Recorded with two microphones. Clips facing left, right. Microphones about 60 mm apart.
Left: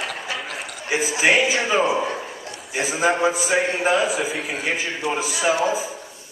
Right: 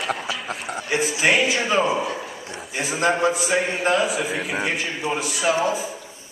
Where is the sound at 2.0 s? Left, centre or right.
Left.